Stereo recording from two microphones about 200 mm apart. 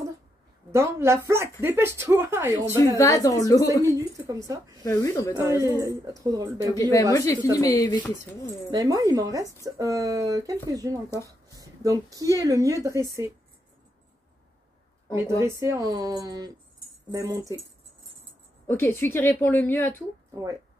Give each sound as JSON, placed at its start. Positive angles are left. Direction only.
{"t": 0.7, "sound": "speech", "side_deg": -15}
{"t": 3.0, "sound": "a woman's voice", "side_deg": 15}
{"t": 3.8, "sound": "speech", "side_deg": -15}
{"t": 4.8, "sound": "a woman's voice", "side_deg": 15}
{"t": 5.6, "sound": "speech", "side_deg": -15}
{"t": 6.7, "sound": "a woman's voice", "side_deg": 15}
{"t": 8.6, "sound": "speech", "side_deg": -15}
{"t": 15.1, "sound": "speech", "side_deg": -15}
{"t": 18.7, "sound": "a woman's voice", "side_deg": 10}